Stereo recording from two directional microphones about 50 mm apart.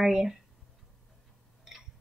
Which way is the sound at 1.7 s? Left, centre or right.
Centre.